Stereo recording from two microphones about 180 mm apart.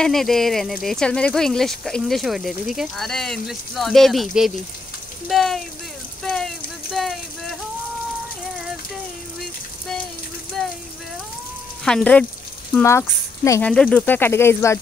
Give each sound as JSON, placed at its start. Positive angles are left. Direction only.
{"t": 0.0, "sound": "speech", "side_deg": 0}
{"t": 6.2, "sound": "a sound", "side_deg": 0}
{"t": 11.8, "sound": "speech", "side_deg": 5}